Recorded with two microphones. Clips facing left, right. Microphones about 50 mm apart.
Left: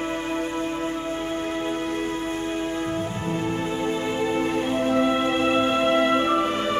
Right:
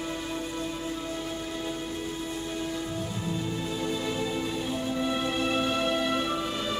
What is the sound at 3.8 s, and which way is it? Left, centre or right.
Music, left.